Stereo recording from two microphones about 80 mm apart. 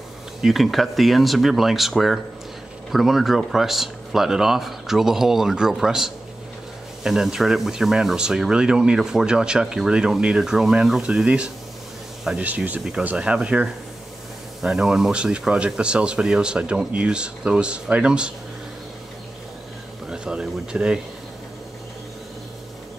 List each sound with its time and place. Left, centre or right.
0.4 s speech: centre
20.1 s speech: centre